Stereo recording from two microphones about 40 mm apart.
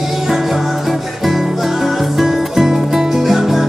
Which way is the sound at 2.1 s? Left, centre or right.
Centre.